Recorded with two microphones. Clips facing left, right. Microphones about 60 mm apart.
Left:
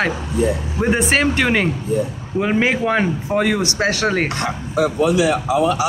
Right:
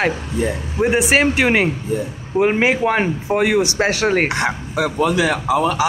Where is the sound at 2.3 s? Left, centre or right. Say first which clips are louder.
Right 2 dB; right.